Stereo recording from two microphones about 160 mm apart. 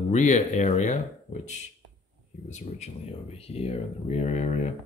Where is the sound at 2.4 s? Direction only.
45° left (ahead or behind).